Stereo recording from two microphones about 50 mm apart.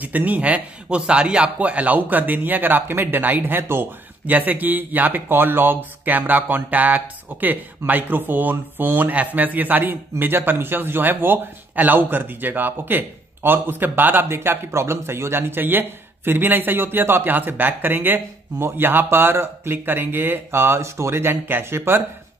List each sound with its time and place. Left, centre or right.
0.0 s a man's voice: right
4.3 s a man's voice: right
15.5 s a man's voice: right